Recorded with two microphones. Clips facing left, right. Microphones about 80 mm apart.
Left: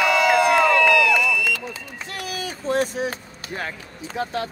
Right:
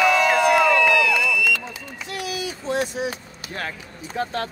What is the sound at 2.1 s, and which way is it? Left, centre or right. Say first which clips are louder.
Vehicle: right 2 dB; left.